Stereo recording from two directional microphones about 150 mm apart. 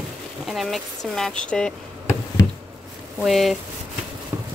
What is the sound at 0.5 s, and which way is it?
Speech, centre (ahead or behind).